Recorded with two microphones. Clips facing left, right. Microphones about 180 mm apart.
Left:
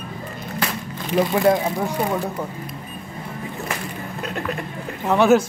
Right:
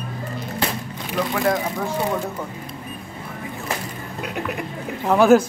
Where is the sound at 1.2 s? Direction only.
25° left (ahead or behind).